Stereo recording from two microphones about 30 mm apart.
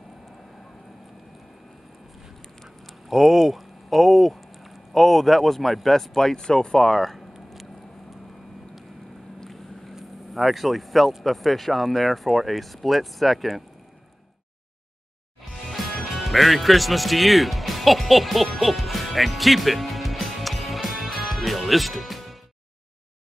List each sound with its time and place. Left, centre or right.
3.1 s speech: centre
6.1 s speech: centre
10.3 s speech: centre
15.5 s music: centre